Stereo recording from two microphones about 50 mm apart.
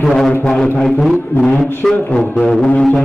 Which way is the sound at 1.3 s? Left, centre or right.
Left.